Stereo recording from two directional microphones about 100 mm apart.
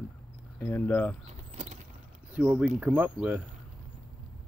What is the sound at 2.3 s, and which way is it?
Speech, 15° right (ahead or behind).